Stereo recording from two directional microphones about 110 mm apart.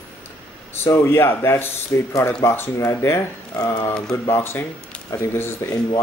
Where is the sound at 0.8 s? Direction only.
20° left (ahead or behind).